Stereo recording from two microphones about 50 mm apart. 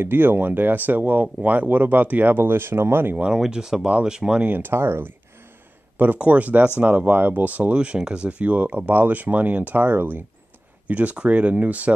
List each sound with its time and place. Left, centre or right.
0.0 s speech: right
3.3 s speech: centre
4.4 s speech: right
5.9 s speech: right